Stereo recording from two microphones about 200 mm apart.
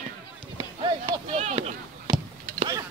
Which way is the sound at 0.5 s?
20° right (ahead or behind).